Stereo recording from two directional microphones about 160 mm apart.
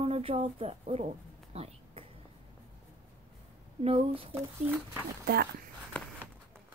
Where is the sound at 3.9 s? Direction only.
35° right (ahead or behind).